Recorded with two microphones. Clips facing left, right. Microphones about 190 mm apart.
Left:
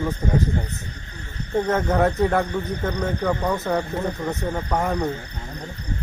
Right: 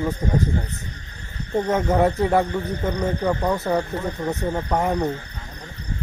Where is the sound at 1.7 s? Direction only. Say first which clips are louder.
Right 2 dB; 10° right (ahead or behind).